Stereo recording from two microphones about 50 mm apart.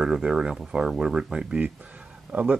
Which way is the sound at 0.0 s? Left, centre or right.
Centre.